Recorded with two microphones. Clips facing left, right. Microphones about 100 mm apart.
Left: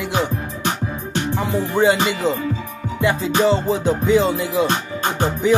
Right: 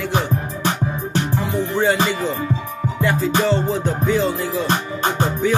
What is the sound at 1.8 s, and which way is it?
Music, 15° left (ahead or behind).